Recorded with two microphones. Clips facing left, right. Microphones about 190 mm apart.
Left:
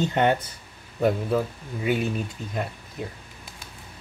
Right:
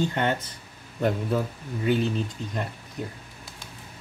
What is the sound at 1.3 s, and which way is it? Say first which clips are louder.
Speech: left 2 dB; centre (ahead or behind).